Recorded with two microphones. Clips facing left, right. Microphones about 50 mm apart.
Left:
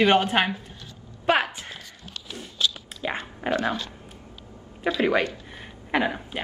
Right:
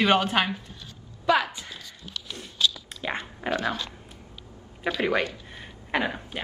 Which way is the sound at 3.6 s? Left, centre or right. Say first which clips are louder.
Left 2 dB; left.